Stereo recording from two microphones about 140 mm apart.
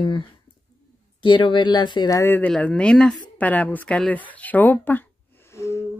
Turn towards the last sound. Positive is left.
turn(degrees=20)  # may be behind; listen again after turning